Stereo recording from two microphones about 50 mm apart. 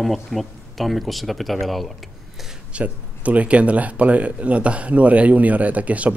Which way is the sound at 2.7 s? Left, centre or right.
Right.